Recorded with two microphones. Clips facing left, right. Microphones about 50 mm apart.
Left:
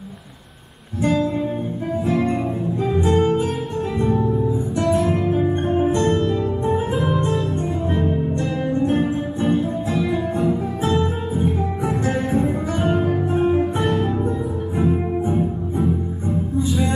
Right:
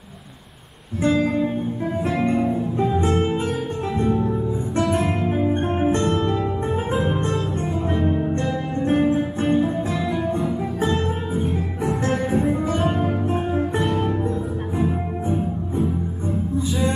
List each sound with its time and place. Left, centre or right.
1.0 s music: right
2.0 s music: centre
2.8 s music: right
4.8 s music: right
8.9 s music: right
10.1 s music: centre
12.3 s music: centre